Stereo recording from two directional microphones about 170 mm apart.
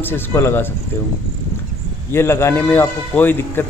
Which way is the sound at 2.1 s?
15° left (ahead or behind).